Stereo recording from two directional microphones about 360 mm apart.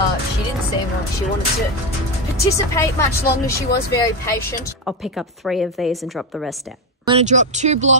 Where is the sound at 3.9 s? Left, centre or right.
Centre.